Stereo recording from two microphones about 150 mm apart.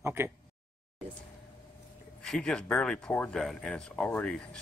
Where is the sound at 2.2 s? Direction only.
5° left (ahead or behind).